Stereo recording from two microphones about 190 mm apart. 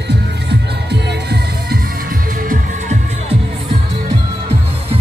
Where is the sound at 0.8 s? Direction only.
60° right (ahead or behind); by 3.0 s 45° right (ahead or behind).